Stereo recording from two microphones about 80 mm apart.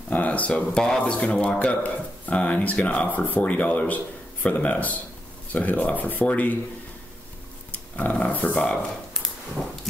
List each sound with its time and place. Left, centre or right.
0.1 s speech: centre
7.7 s speech: centre